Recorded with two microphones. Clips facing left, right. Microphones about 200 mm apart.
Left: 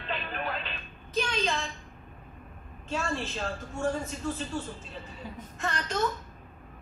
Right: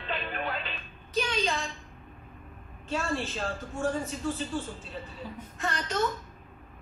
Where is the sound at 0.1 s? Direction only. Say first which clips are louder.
Right 1 dB; centre (ahead or behind).